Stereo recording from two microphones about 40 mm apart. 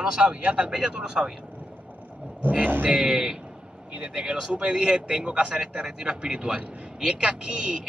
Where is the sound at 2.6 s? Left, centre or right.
Right.